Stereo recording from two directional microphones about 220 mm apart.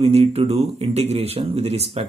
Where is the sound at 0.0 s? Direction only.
25° right (ahead or behind).